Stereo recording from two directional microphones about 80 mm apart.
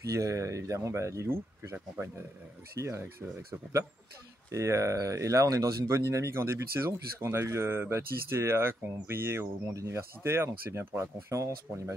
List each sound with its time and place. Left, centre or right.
0.1 s speech: right
4.5 s speech: right